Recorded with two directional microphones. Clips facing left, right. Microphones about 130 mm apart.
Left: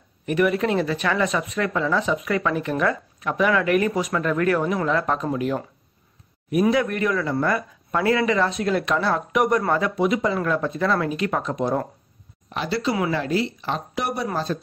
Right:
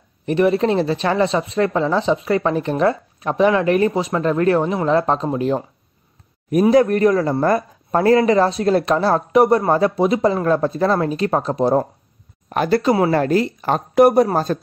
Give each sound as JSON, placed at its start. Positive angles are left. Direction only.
{"t": 0.3, "sound": "speech", "side_deg": -30}
{"t": 6.7, "sound": "speech", "side_deg": -40}
{"t": 12.4, "sound": "a woman's voice", "side_deg": -50}